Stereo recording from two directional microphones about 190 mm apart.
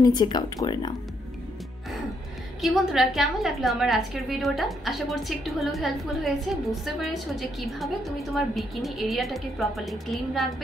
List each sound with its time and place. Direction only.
0.0 s speech: 20° left (ahead or behind)
2.6 s a woman's voice: centre (ahead or behind)